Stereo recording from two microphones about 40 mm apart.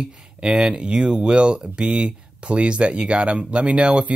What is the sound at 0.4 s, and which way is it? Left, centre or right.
Speech, right.